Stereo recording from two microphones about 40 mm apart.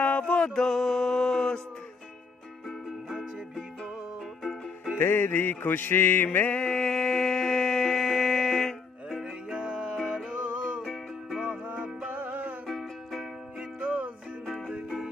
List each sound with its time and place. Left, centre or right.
0.2 s music: left
0.6 s music: centre
4.9 s music: left
6.5 s a sound: centre
9.2 s music: right
12.7 s music: centre
13.7 s music: right